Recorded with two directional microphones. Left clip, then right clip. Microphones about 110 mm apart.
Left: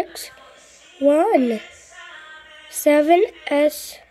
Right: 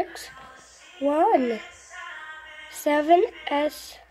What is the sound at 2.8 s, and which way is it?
A woman's voice, 90° left.